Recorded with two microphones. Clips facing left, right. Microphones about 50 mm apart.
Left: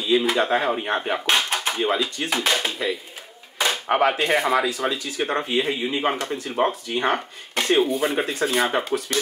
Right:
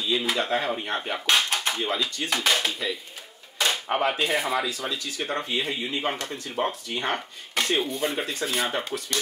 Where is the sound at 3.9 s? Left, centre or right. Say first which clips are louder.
Left 8 dB; left.